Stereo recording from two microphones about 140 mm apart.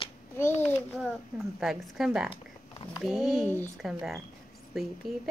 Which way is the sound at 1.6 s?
Centre (ahead or behind).